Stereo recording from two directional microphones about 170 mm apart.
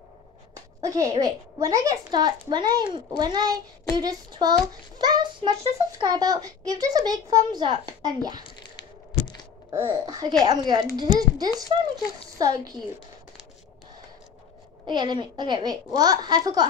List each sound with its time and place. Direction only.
0.7 s a woman's voice: 20° right (ahead or behind)
9.7 s a woman's voice: 20° right (ahead or behind)
14.9 s a woman's voice: 25° right (ahead or behind)